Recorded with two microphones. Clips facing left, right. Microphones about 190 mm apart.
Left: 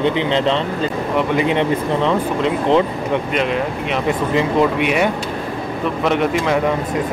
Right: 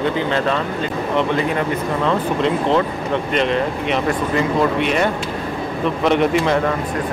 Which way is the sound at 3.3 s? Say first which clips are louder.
Right 1 dB; 5° left (ahead or behind).